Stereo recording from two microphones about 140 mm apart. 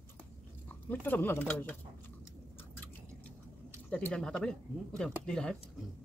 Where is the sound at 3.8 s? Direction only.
5° left (ahead or behind).